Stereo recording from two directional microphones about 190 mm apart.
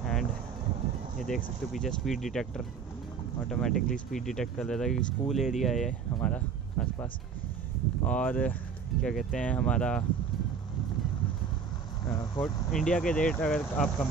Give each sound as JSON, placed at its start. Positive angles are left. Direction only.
{"t": 0.0, "sound": "a sound", "side_deg": 0}
{"t": 1.2, "sound": "speech", "side_deg": 0}
{"t": 6.2, "sound": "a sound", "side_deg": 5}
{"t": 8.0, "sound": "speech", "side_deg": 10}
{"t": 12.0, "sound": "vehicle", "side_deg": 20}
{"t": 12.7, "sound": "speech", "side_deg": 5}